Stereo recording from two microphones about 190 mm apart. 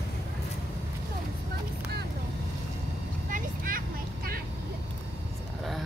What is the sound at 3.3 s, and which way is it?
Vehicle, 45° right (ahead or behind).